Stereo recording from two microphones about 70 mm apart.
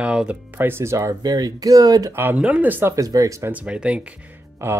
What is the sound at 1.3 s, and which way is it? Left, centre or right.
Speech, right.